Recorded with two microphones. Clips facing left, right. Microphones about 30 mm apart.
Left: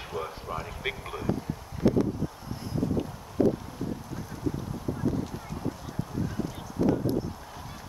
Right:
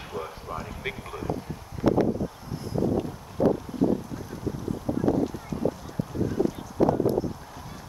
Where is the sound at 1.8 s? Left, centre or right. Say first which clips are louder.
Right 1 dB; left.